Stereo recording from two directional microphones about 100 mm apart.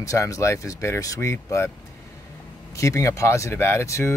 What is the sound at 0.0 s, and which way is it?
Speech, 30° left (ahead or behind).